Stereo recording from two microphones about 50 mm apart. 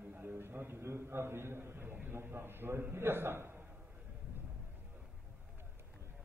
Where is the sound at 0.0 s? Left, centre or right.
Right.